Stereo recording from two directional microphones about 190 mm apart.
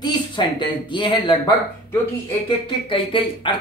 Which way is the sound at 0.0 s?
25° left (ahead or behind).